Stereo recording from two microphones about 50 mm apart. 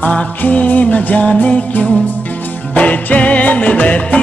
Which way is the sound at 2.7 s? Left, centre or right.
Left.